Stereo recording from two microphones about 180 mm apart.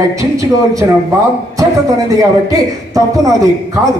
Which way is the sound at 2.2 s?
20° right (ahead or behind).